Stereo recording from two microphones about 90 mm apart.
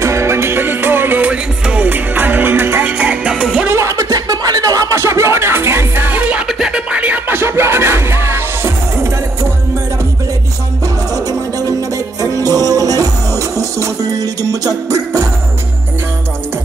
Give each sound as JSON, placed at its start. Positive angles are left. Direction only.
{"t": 0.0, "sound": "music", "side_deg": -30}
{"t": 3.7, "sound": "beatboxing", "side_deg": -35}
{"t": 6.4, "sound": "music", "side_deg": -10}
{"t": 12.2, "sound": "music", "side_deg": -40}